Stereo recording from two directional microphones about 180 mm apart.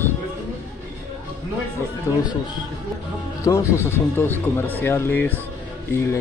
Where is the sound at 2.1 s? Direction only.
15° left (ahead or behind).